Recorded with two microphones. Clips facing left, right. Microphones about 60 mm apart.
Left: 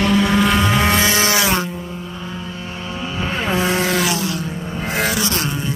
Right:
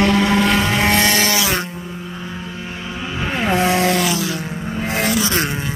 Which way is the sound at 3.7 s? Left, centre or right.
Centre.